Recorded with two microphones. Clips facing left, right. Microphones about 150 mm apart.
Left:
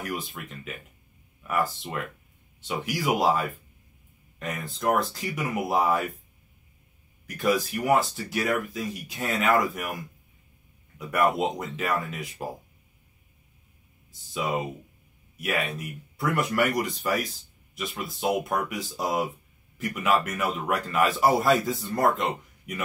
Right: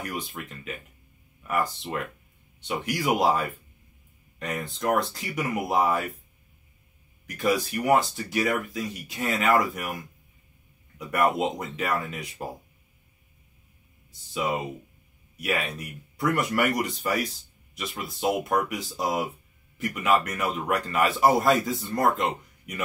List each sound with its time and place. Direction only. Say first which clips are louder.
1.5 s speech: even; centre (ahead or behind)
7.2 s speech: even; centre (ahead or behind)
11.1 s speech: even; centre (ahead or behind)
14.1 s speech: even; centre (ahead or behind)